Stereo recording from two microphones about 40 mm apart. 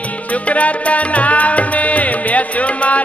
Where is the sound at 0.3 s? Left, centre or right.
Left.